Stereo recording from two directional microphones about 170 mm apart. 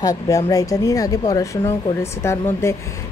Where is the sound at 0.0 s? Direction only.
20° left (ahead or behind).